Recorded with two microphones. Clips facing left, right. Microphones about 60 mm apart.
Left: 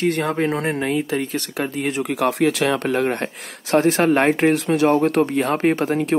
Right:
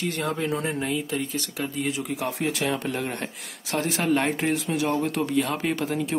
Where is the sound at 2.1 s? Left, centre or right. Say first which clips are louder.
Left 9 dB; left.